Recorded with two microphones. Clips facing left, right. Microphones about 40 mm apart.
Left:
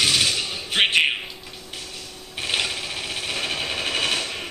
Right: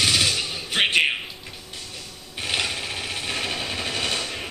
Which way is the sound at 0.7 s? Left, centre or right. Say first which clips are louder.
Left 1 dB; centre.